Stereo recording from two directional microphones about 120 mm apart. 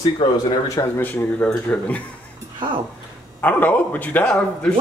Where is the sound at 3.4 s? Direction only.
15° left (ahead or behind).